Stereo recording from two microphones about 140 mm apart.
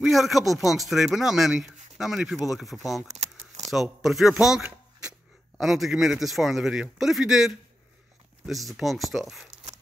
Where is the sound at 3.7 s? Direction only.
Centre (ahead or behind).